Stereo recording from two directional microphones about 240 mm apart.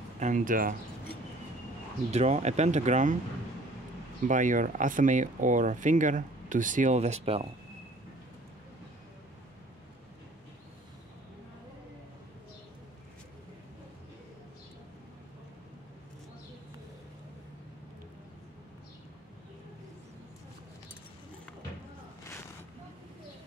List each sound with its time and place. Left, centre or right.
0.2 s speech: right
2.0 s speech: right
4.3 s speech: right